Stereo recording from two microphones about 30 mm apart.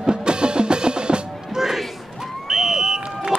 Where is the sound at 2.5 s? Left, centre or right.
Centre.